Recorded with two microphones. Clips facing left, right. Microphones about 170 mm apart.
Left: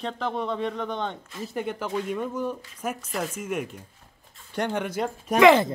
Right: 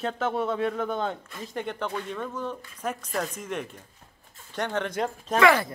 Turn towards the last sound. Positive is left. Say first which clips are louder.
# left 4 dB
turn(degrees=20)  # may be behind; listen again after turning